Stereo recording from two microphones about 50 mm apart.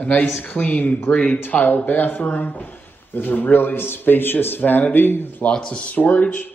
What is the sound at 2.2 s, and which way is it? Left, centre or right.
A man's voice, left.